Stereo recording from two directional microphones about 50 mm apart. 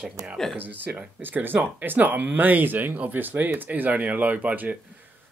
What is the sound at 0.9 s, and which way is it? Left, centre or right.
Speech, right.